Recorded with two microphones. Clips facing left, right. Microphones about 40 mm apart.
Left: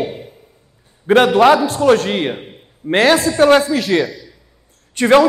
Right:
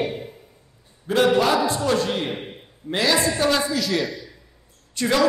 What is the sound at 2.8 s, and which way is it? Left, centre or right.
A man's voice, left.